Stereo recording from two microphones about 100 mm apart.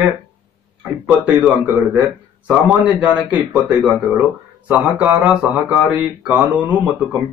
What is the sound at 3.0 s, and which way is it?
Speech, 15° right (ahead or behind).